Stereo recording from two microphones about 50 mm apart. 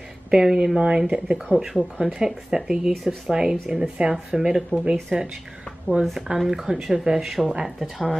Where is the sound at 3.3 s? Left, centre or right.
Centre.